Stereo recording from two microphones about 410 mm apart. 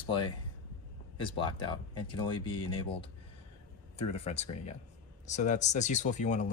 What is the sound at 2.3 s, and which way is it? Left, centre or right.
Speech, left.